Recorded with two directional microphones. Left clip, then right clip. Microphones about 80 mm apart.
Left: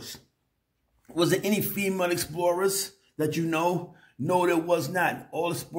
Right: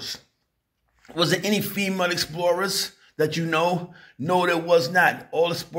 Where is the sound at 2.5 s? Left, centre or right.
Left.